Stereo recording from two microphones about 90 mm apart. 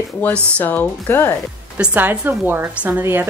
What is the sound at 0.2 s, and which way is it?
A woman's voice, 15° left (ahead or behind).